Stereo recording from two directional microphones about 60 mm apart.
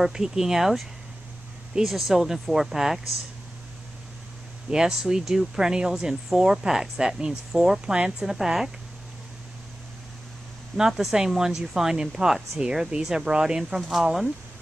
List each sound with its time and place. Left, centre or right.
0.0 s speech: centre
4.6 s speech: centre
8.3 s speech: centre
10.8 s speech: centre